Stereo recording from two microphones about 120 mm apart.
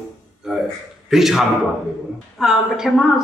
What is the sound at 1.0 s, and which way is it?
A man's voice, 5° right (ahead or behind).